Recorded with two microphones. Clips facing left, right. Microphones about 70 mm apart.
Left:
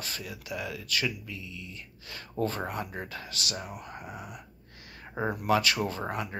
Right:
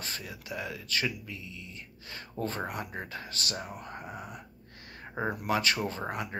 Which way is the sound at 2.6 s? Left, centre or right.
Centre.